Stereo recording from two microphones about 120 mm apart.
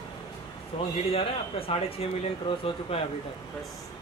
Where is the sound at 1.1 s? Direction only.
55° left (ahead or behind).